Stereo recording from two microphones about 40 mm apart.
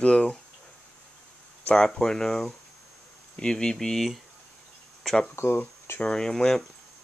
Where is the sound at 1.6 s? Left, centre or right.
Centre.